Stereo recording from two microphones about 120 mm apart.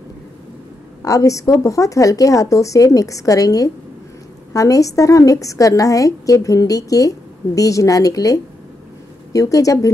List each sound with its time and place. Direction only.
1.0 s a woman's voice: 30° left (ahead or behind)